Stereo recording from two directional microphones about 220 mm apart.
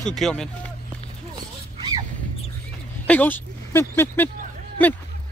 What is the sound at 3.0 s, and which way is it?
Speech, 10° left (ahead or behind).